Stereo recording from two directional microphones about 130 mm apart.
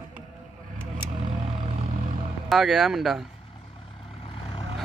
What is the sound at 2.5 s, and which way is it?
Speech, centre (ahead or behind).